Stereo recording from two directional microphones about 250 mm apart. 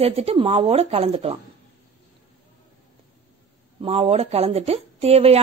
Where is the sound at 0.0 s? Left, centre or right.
Right.